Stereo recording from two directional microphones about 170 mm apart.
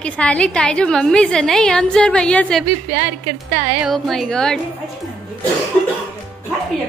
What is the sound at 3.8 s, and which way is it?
Speech, centre (ahead or behind).